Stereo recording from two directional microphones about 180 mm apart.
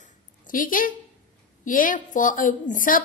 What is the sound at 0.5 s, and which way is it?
A woman's voice, 50° left (ahead or behind).